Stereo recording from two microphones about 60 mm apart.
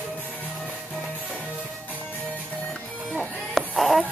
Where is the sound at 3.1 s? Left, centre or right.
Centre.